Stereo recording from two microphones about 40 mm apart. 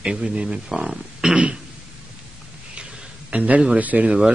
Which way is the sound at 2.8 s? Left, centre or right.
Right.